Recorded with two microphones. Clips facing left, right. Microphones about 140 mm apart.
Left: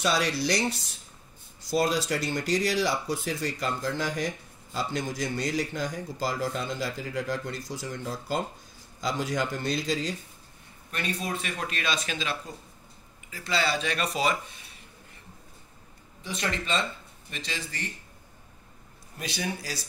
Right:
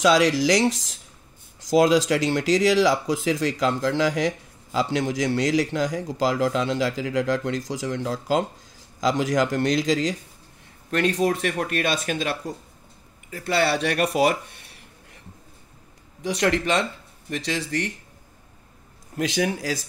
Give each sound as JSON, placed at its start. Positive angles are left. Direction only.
{"t": 0.0, "sound": "speech", "side_deg": -90}
{"t": 16.2, "sound": "speech", "side_deg": -80}
{"t": 19.1, "sound": "speech", "side_deg": -90}